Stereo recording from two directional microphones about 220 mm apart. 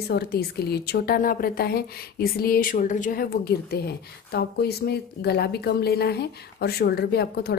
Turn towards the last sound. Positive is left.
turn(degrees=45)  # may be behind; listen again after turning